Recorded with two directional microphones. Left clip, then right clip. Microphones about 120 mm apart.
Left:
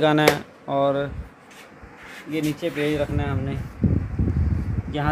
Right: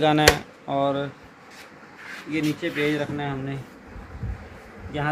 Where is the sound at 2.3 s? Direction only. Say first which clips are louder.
Left 1 dB; 30° left (ahead or behind).